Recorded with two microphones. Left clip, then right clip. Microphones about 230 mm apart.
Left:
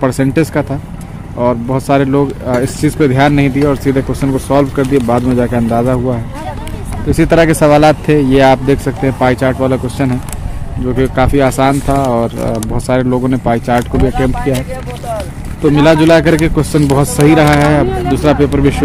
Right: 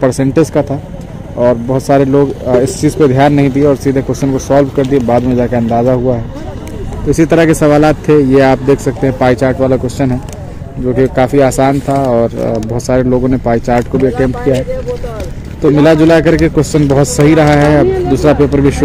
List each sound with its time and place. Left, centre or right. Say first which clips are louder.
0.0 s speech: right 2 dB; centre
15.8 s speech: even; centre